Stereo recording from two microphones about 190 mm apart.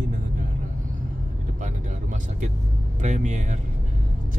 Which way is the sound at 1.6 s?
40° right (ahead or behind).